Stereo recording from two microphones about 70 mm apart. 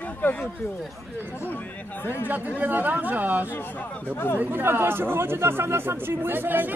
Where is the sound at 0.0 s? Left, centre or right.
Left.